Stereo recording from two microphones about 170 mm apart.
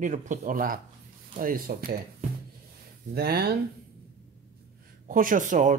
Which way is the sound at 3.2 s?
65° right (ahead or behind).